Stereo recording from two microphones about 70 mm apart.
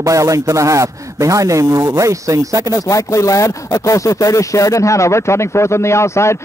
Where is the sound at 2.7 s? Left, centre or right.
Left.